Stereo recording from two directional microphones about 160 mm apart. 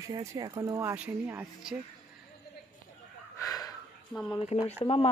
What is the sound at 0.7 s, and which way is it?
Speech, 10° right (ahead or behind).